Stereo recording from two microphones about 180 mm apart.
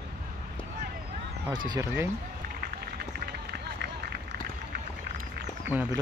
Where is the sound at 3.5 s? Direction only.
65° right (ahead or behind).